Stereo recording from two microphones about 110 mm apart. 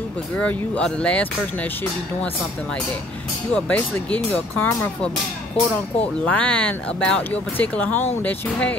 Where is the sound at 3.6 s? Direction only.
15° left (ahead or behind).